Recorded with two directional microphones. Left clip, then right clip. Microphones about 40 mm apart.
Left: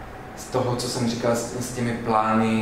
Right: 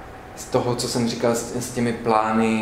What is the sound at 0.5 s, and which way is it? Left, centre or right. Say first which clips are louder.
Speech: right 3 dB; right.